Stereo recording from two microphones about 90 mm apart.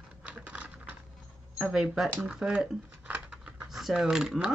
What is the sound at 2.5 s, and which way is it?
Typing, 15° right (ahead or behind).